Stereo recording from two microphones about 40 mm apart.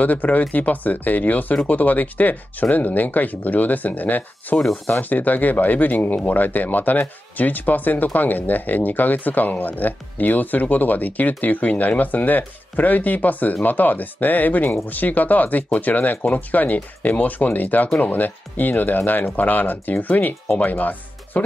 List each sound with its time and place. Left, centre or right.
0.0 s speech: left